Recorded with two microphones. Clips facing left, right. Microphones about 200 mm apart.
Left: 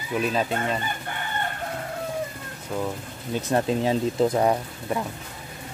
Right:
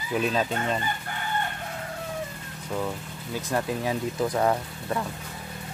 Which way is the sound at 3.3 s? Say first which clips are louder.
Left 5 dB; 25° left (ahead or behind).